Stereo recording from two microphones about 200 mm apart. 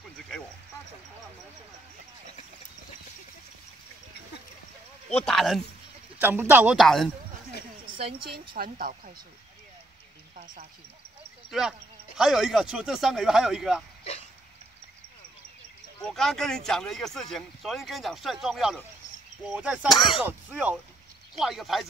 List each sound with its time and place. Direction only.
5.1 s speech: centre (ahead or behind)
6.2 s a man's voice: 10° right (ahead or behind)
7.9 s speech: 25° right (ahead or behind)
8.5 s speech: 45° right (ahead or behind)
10.3 s speech: 40° right (ahead or behind)
12.2 s speech: centre (ahead or behind)
16.0 s speech: centre (ahead or behind)
19.9 s speech: 25° left (ahead or behind)
20.2 s a man's voice: 5° right (ahead or behind)